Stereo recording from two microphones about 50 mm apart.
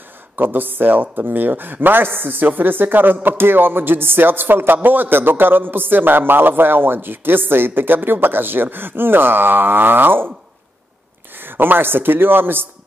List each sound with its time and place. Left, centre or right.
0.4 s a man's voice: right
11.3 s a man's voice: right